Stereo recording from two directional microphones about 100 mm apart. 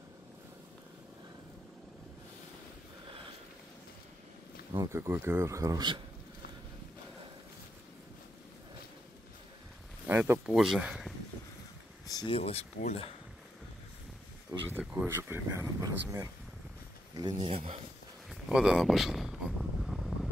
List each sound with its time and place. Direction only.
4.7 s speech: 30° right (ahead or behind)
10.0 s speech: 25° right (ahead or behind)
10.4 s speech: 5° right (ahead or behind)
12.3 s speech: 85° left
14.5 s speech: 20° right (ahead or behind)
15.8 s speech: 35° right (ahead or behind)
17.2 s speech: 50° right (ahead or behind)
17.5 s speech: 90° right
18.3 s a sound: 5° right (ahead or behind)